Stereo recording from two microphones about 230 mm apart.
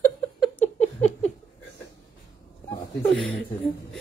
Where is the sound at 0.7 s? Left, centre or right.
Left.